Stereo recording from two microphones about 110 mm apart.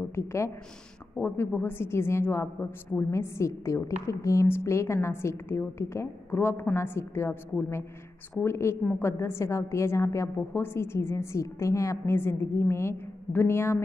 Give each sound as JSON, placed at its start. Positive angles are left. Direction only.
{"t": 0.1, "sound": "a woman's voice", "side_deg": 25}
{"t": 8.4, "sound": "a woman's voice", "side_deg": 25}